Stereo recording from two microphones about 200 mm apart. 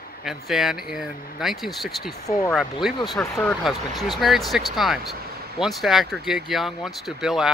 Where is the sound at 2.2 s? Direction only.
15° left (ahead or behind).